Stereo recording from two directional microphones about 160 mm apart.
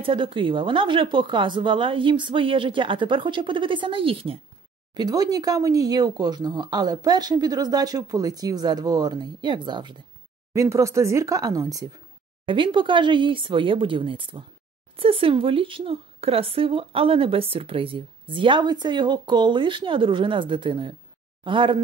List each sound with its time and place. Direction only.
0.0 s a woman's voice: 30° right (ahead or behind)
4.9 s a woman's voice: 25° right (ahead or behind)